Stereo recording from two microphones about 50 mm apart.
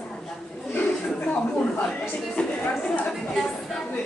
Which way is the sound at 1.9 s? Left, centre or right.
Centre.